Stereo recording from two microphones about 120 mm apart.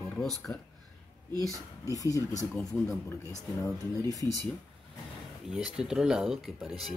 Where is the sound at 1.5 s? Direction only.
30° left (ahead or behind).